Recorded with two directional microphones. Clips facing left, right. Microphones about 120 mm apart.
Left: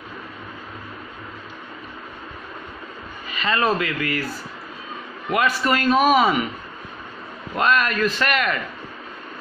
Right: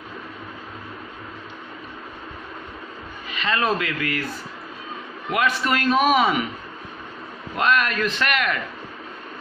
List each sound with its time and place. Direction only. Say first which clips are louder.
3.3 s a man's voice: left 2 dB; centre (ahead or behind)
5.3 s a man's voice: left 2 dB; centre (ahead or behind)
7.5 s a man's voice: left 1 dB; centre (ahead or behind)